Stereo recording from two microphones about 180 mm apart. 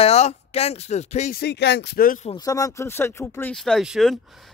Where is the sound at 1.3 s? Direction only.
65° left (ahead or behind).